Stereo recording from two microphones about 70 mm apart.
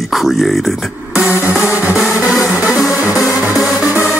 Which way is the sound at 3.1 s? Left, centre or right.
Left.